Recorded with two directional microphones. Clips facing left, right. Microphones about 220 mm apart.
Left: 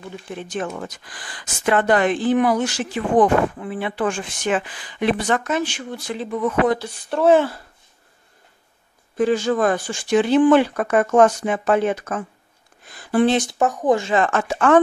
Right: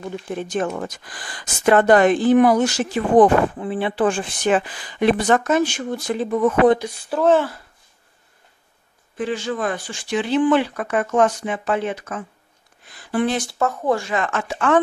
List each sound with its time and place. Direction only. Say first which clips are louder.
0.3 s speech: right 3 dB; 45° right (ahead or behind)
7.1 s speech: left 1 dB; 5° right (ahead or behind)
9.1 s speech: left 6 dB; 40° left (ahead or behind)
13.1 s speech: left 4 dB; 25° left (ahead or behind); by 14.8 s 45° left (ahead or behind)